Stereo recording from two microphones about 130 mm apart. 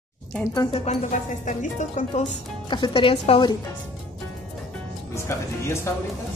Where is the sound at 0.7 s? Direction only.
65° left (ahead or behind).